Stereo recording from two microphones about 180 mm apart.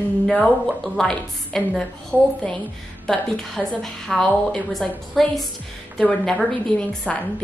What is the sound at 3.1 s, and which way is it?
A woman's voice, 5° left (ahead or behind).